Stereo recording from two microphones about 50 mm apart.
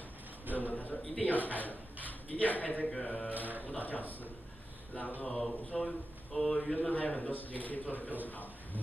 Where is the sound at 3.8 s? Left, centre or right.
Left.